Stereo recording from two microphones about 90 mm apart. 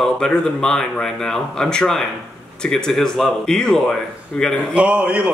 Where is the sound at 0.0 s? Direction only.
5° left (ahead or behind).